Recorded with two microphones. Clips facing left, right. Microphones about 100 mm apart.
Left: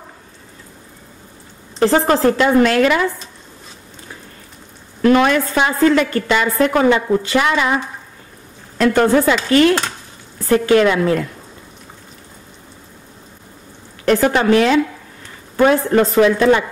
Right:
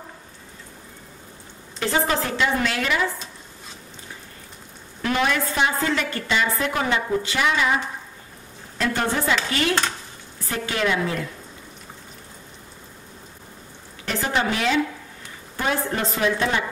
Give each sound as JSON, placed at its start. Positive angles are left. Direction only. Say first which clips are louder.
{"t": 1.8, "sound": "a woman's voice", "louder": "left 9 dB", "side_deg": 45}
{"t": 5.0, "sound": "a woman's voice", "louder": "left 10 dB", "side_deg": 60}
{"t": 8.7, "sound": "speech", "louder": "left 11 dB", "side_deg": 80}
{"t": 10.5, "sound": "a woman's voice", "louder": "left 11 dB", "side_deg": 65}
{"t": 14.0, "sound": "a woman's voice", "louder": "left 10 dB", "side_deg": 60}